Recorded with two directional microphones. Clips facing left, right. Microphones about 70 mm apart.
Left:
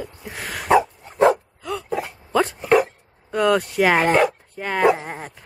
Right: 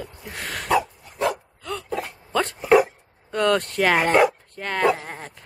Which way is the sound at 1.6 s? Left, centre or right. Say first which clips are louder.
Left 2 dB; centre.